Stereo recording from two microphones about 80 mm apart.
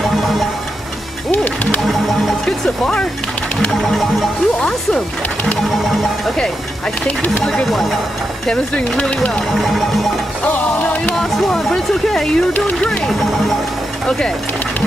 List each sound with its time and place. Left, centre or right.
0.0 s music: centre
1.3 s music: centre
1.9 s music: centre
4.6 s speech: centre
7.1 s speech: centre
7.4 s speech: centre
10.4 s music: left
11.1 s speech: centre